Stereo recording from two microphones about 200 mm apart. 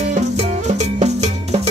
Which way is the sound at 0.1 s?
35° right (ahead or behind).